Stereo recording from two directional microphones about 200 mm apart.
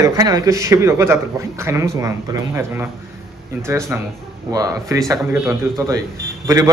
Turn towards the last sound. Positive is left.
turn(degrees=-15)  # may be behind; listen again after turning